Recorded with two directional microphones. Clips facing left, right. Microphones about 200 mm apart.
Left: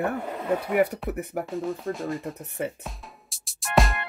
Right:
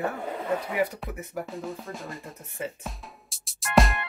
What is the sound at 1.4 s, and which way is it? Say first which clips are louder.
Speech: left 6 dB; centre (ahead or behind).